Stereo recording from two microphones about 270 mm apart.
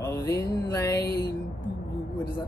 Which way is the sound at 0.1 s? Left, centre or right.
Centre.